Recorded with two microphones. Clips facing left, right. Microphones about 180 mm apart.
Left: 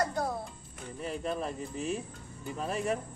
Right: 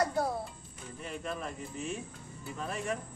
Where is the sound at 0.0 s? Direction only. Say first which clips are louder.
Right 1 dB; 5° right (ahead or behind).